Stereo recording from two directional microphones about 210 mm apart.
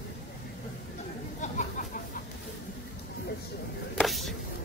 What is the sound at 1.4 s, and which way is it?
Chatter, 35° left (ahead or behind).